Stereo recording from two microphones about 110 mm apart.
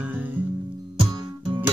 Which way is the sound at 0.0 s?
15° right (ahead or behind).